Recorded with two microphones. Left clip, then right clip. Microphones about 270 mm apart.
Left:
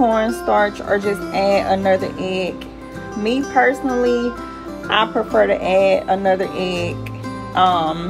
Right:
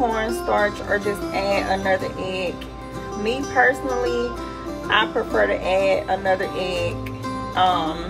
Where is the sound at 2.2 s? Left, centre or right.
Left.